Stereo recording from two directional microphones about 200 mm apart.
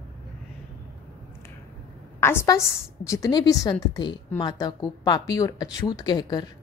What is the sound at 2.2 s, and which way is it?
A woman's voice, 15° left (ahead or behind).